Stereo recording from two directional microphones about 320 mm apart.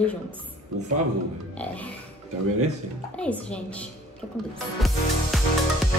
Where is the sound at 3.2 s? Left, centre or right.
Centre.